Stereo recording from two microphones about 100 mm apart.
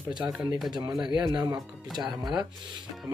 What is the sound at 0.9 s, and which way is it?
Speech, 5° right (ahead or behind).